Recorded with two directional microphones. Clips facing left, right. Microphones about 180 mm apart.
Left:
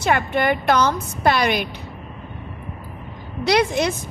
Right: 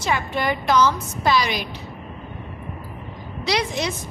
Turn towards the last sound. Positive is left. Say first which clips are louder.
# left 5 dB
turn(degrees=55)  # may be behind; listen again after turning